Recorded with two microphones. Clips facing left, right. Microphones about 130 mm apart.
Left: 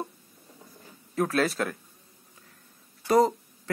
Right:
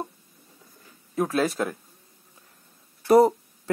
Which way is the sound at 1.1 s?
10° right (ahead or behind).